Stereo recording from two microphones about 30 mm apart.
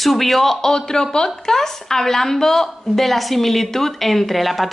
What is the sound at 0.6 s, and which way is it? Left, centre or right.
A man's voice, left.